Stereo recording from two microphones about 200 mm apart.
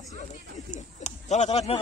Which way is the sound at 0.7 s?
35° left (ahead or behind).